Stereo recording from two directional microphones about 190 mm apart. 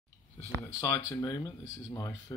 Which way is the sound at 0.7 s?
20° left (ahead or behind).